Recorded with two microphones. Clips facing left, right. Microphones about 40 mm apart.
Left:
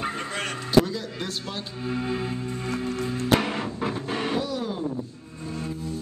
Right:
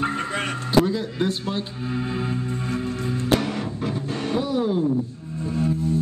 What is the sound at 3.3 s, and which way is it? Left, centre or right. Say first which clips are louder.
Music: right 1 dB; left.